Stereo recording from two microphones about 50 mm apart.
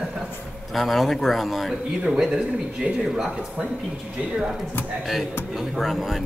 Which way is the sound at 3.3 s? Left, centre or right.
Right.